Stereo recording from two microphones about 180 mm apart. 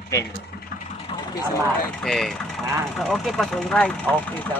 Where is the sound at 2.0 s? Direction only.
5° left (ahead or behind).